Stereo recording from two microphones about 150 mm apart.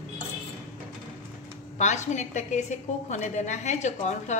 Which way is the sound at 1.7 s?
50° left (ahead or behind).